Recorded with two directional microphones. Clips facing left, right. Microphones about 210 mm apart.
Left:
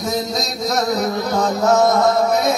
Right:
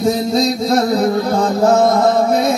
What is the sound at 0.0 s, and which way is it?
Music, 30° right (ahead or behind).